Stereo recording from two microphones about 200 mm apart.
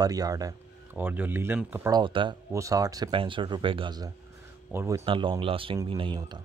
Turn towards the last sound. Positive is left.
turn(degrees=-25)  # may be behind; listen again after turning